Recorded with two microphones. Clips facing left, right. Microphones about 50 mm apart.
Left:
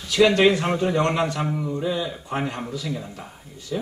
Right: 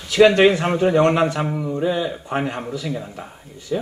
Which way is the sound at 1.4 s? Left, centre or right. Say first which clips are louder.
Right 2 dB; centre.